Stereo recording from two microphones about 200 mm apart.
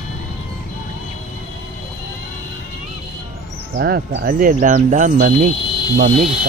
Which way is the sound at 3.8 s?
55° right (ahead or behind).